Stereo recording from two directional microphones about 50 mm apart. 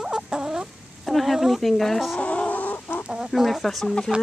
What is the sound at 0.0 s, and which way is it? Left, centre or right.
Fowl, centre.